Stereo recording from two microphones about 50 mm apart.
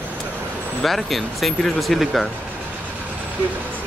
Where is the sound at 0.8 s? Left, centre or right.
Centre.